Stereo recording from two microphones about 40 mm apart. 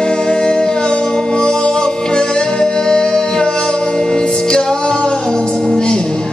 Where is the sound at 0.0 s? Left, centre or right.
Left.